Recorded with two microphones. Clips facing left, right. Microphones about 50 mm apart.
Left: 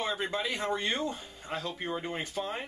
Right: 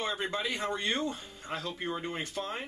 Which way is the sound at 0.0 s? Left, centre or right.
Centre.